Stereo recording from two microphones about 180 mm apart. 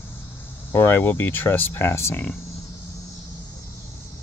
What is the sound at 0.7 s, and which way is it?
Speech, 15° left (ahead or behind).